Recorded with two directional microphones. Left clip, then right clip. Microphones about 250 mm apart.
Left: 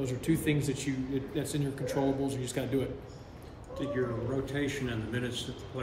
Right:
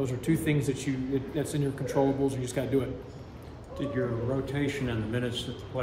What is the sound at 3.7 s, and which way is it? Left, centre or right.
Speech, right.